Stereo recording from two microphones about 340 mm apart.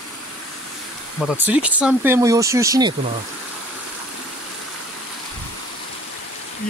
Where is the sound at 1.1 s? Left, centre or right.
Centre.